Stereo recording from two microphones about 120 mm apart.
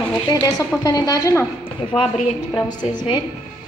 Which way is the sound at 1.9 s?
10° left (ahead or behind).